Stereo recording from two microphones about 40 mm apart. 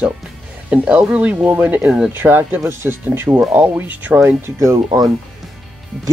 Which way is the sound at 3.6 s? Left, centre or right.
Right.